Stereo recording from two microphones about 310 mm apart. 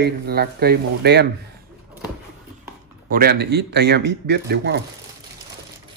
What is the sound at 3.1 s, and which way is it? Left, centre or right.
Speech, right.